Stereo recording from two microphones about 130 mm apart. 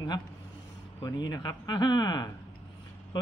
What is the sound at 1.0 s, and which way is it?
Speech, 30° left (ahead or behind).